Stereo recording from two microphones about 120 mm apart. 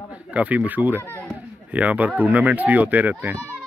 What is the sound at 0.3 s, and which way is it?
Speech, 10° right (ahead or behind).